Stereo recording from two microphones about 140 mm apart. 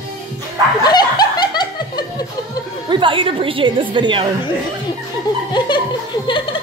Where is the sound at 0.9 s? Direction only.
30° left (ahead or behind).